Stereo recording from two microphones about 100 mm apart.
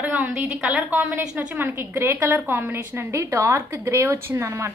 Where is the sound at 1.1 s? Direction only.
20° right (ahead or behind).